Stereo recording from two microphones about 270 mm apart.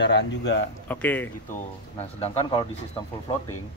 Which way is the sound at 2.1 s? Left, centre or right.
Left.